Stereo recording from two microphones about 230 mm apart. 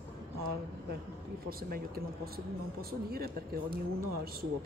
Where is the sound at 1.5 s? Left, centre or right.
Right.